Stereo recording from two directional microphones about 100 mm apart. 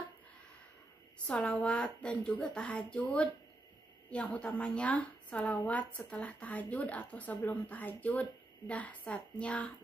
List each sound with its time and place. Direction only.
1.2 s a woman's voice: 10° left (ahead or behind)